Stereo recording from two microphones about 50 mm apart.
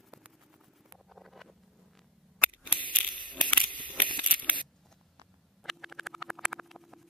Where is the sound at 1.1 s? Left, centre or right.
Centre.